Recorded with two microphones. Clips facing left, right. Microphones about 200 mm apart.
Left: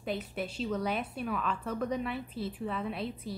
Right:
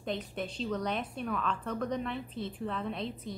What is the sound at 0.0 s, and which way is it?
A woman's voice, 5° left (ahead or behind).